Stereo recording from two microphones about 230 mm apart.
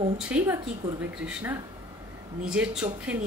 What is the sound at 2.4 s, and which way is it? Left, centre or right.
Speech, centre.